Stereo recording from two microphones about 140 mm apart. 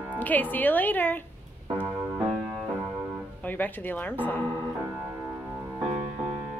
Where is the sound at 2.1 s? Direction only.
5° right (ahead or behind).